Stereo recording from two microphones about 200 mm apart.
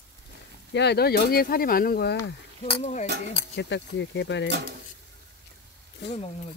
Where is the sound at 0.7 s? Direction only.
55° left (ahead or behind).